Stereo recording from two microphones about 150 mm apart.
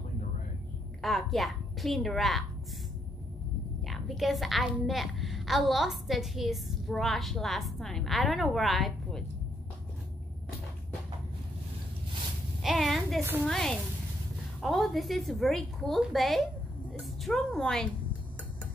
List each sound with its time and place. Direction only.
1.0 s a woman's voice: centre (ahead or behind)
3.8 s a woman's voice: centre (ahead or behind)
12.6 s a woman's voice: centre (ahead or behind)
13.2 s a woman's voice: 15° right (ahead or behind)
13.5 s a woman's voice: 5° left (ahead or behind)